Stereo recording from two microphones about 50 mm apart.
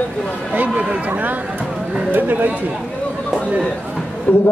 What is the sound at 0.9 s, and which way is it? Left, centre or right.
Speech, right.